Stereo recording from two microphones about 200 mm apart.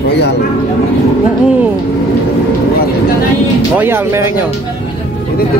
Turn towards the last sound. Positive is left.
turn(degrees=-10)  # may be behind; listen again after turning